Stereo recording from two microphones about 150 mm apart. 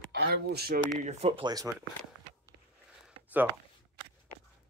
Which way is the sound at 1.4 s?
25° right (ahead or behind).